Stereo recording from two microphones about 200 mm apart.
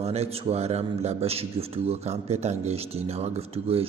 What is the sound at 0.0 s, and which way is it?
A man's voice, 30° right (ahead or behind).